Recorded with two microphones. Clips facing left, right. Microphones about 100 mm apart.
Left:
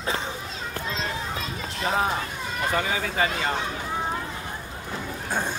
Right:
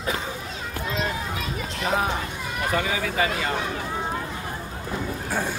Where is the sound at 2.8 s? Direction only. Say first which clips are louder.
Right 1 dB; 35° left (ahead or behind).